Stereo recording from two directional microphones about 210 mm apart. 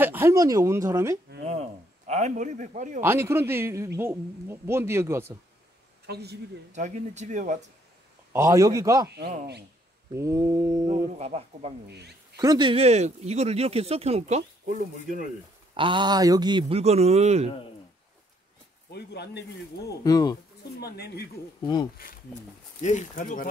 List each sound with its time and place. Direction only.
0.0 s a woman's voice: 10° right (ahead or behind)
1.5 s a man's voice: 30° right (ahead or behind)
3.0 s a woman's voice: 10° right (ahead or behind)
6.0 s a woman's voice: 50° right (ahead or behind)
6.7 s speech: 35° right (ahead or behind)
8.3 s a woman's voice: 15° right (ahead or behind)
10.1 s a woman's voice: 15° right (ahead or behind)
11.1 s speech: 30° right (ahead or behind)
12.4 s speech: 20° right (ahead or behind); by 14.8 s 35° right (ahead or behind)
15.7 s speech: 25° right (ahead or behind)
18.9 s speech: 50° left (ahead or behind)
20.0 s speech: 20° left (ahead or behind)
20.8 s speech: 50° left (ahead or behind)